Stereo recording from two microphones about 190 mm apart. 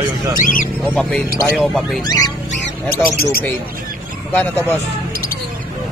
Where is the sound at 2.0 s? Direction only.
20° left (ahead or behind).